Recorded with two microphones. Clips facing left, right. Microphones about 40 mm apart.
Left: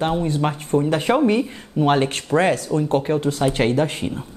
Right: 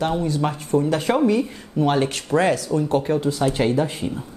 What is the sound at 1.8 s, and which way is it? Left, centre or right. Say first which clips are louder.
Speech: left 2 dB; left.